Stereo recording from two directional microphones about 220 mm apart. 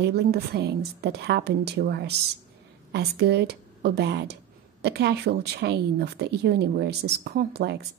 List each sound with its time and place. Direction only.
0.0 s a woman's voice: 45° right (ahead or behind)